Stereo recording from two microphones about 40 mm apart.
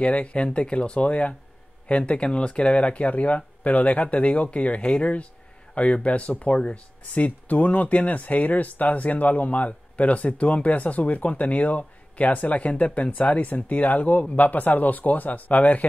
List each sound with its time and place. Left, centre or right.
0.0 s speech: left